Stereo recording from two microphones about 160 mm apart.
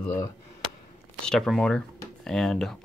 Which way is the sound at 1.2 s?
5° left (ahead or behind).